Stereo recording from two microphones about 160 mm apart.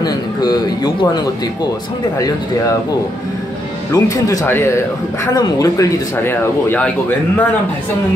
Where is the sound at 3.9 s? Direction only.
20° left (ahead or behind).